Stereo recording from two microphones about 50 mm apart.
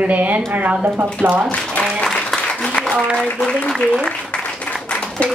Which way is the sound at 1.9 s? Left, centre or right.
Centre.